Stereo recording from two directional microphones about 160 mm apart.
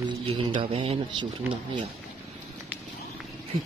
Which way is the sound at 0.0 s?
30° right (ahead or behind).